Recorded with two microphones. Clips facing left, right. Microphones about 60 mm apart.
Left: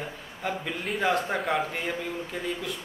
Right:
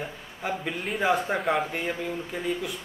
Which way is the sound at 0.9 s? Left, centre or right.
Centre.